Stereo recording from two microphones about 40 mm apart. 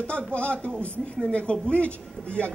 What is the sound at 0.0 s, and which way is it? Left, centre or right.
A man's voice, left.